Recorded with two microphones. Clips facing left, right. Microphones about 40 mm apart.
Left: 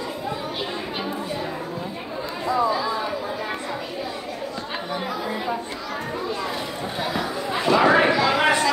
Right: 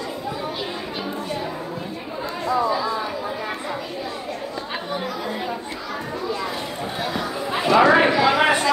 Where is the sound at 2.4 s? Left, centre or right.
Centre.